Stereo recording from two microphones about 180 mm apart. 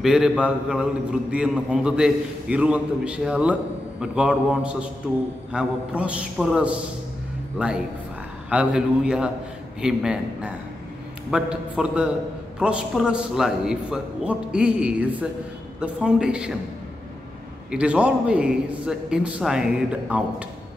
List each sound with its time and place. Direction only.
0.0 s a man's voice: 5° right (ahead or behind)
17.6 s a man's voice: 5° right (ahead or behind)